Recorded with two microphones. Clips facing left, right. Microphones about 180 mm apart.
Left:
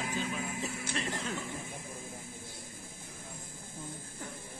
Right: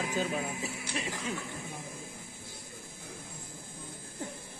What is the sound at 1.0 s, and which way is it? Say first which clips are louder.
Music: right 1 dB; 5° right (ahead or behind).